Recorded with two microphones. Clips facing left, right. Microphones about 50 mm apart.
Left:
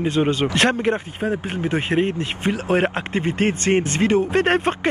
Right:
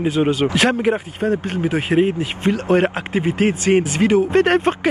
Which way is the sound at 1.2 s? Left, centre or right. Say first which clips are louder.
Right 6 dB; centre.